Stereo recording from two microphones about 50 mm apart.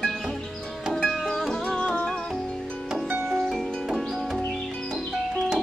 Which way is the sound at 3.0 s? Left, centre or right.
Right.